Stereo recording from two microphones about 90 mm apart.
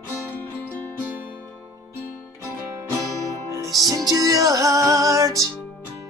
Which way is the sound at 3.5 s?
40° right (ahead or behind).